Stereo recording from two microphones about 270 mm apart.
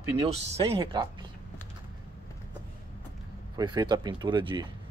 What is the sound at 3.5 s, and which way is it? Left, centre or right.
Speech, centre.